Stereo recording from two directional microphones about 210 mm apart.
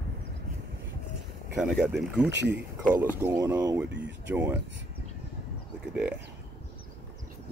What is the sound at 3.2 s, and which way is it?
Speech, 15° right (ahead or behind).